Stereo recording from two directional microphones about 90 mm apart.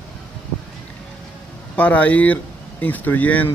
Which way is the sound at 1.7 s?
15° left (ahead or behind).